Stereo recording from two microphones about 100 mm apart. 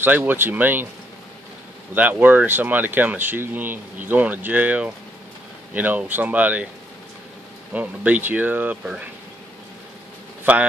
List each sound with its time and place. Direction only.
0.0 s speech: 20° right (ahead or behind)
2.0 s speech: 20° right (ahead or behind)
7.7 s speech: 15° right (ahead or behind)